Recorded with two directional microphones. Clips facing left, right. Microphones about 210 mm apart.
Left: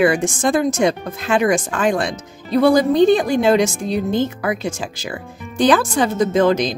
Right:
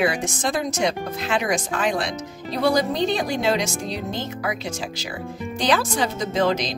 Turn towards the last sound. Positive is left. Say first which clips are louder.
# left 6 dB
turn(degrees=50)  # may be behind; listen again after turning